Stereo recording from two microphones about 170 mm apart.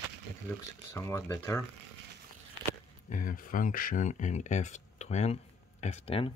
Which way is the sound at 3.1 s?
50° left (ahead or behind).